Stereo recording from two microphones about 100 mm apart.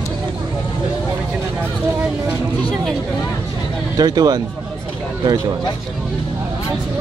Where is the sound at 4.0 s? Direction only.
40° right (ahead or behind).